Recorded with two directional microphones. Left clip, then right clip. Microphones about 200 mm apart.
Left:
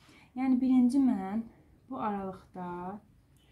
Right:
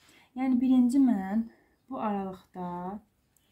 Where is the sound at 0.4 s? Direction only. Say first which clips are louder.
Right 2 dB; 25° right (ahead or behind).